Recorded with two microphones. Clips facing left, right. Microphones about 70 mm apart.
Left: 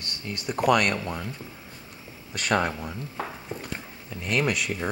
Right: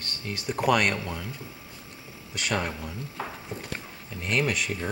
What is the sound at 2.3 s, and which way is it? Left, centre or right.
Speech, left.